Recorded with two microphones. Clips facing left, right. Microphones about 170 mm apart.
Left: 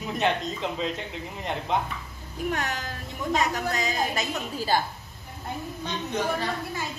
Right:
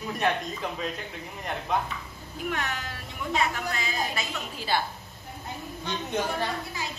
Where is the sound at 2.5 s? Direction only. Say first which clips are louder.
Left 2 dB; 40° left (ahead or behind).